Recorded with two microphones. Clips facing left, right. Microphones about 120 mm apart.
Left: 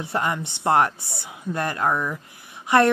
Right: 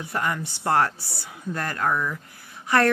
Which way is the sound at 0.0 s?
25° left (ahead or behind).